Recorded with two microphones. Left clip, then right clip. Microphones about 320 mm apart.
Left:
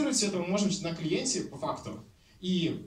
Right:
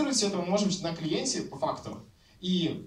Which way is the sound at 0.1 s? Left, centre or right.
Centre.